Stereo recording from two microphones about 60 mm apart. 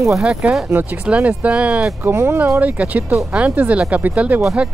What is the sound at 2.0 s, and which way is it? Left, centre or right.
Speech, right.